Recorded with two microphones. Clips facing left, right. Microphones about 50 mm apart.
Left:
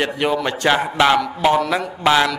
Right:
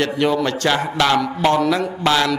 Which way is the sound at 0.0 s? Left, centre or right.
Centre.